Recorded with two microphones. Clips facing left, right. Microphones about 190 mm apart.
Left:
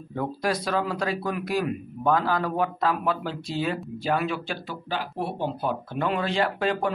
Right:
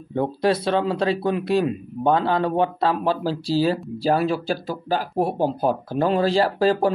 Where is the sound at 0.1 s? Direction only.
25° right (ahead or behind).